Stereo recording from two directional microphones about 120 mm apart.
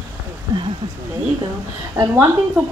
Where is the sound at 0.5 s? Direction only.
35° right (ahead or behind).